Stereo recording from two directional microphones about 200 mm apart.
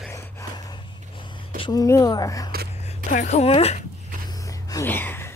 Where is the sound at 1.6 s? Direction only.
20° left (ahead or behind).